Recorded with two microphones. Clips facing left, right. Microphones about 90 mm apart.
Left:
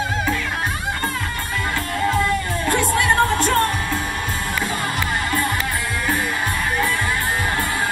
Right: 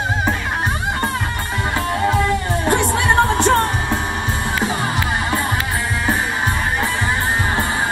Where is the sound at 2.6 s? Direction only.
20° right (ahead or behind).